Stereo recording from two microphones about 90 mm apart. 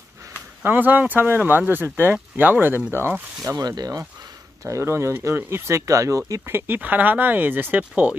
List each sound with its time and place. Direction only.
0.7 s speech: 20° right (ahead or behind)
3.4 s speech: 45° right (ahead or behind)
4.6 s speech: 30° right (ahead or behind)
6.4 s speech: 25° right (ahead or behind)